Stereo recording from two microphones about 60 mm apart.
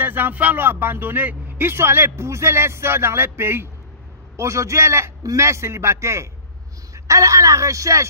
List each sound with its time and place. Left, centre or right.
0.0 s a man's voice: right
4.4 s a man's voice: right